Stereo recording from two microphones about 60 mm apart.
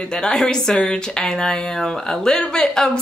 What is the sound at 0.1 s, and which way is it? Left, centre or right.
A woman's voice, centre.